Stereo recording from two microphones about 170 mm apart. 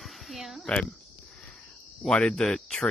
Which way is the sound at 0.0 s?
Centre (ahead or behind).